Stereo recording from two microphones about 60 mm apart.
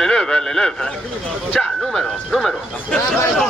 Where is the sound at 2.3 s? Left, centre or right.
Centre.